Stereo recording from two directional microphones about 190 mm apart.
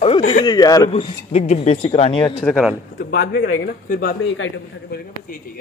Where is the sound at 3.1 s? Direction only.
55° left (ahead or behind).